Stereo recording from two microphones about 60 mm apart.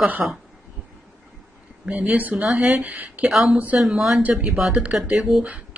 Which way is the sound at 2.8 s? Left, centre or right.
Right.